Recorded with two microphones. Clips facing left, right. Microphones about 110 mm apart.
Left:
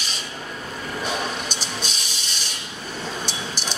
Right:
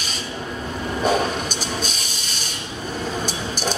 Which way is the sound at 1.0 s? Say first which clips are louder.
Right 8 dB; 45° right (ahead or behind).